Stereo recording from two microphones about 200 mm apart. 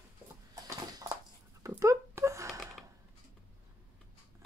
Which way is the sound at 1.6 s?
15° right (ahead or behind).